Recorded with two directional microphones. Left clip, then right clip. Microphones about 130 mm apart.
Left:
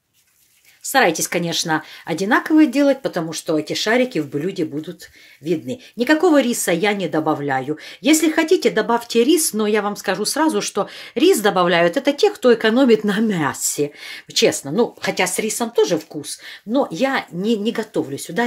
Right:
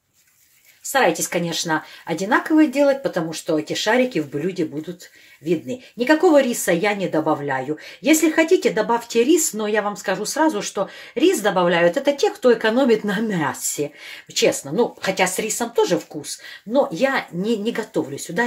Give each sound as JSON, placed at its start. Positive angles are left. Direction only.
{"t": 0.9, "sound": "speech", "side_deg": 60}